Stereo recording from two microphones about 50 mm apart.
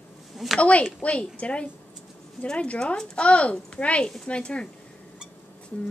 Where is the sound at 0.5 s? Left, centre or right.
Left.